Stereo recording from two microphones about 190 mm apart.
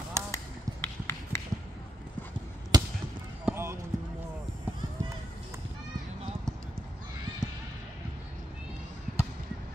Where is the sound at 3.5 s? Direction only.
10° right (ahead or behind).